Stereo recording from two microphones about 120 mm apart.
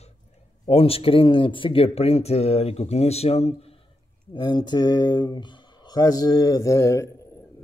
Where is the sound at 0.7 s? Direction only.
55° left (ahead or behind).